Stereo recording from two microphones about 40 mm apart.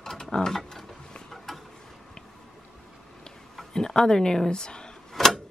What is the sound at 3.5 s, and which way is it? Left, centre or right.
Speech, centre.